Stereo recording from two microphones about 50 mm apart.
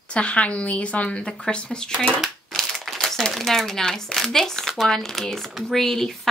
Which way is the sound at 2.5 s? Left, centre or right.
Centre.